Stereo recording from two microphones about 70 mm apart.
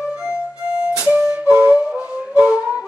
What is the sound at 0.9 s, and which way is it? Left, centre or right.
Flute, centre.